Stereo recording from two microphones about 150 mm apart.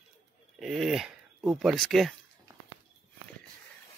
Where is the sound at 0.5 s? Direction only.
Centre (ahead or behind).